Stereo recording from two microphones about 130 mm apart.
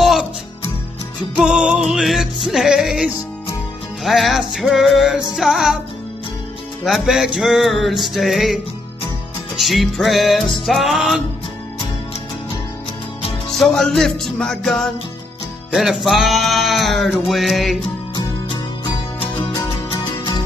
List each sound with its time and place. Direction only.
0.0 s music: centre (ahead or behind)
1.3 s music: 5° right (ahead or behind)
6.8 s music: centre (ahead or behind)
9.6 s music: centre (ahead or behind)
13.5 s music: 5° left (ahead or behind)
19.5 s music: 35° left (ahead or behind)